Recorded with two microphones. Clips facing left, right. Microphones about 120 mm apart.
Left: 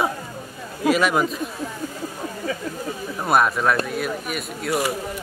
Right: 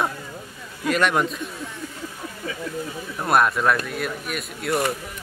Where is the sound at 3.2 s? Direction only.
Centre (ahead or behind).